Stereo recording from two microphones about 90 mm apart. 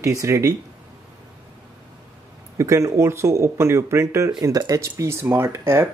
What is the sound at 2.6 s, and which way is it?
Speech, 35° right (ahead or behind).